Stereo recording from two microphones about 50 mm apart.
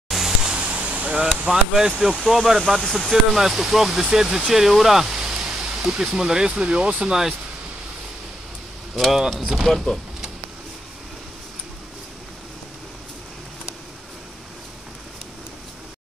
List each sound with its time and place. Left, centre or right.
0.1 s a sound: centre
0.6 s vehicle: right
2.2 s speech: centre
4.5 s a sound: centre
5.7 s speech: centre
8.9 s speech: centre